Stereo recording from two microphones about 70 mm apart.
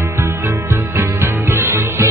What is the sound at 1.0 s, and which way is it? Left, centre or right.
Music, right.